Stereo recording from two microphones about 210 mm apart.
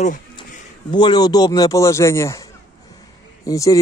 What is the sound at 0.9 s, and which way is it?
A man's voice, 20° left (ahead or behind).